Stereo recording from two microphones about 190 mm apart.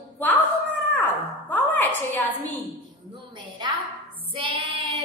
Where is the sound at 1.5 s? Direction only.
10° left (ahead or behind).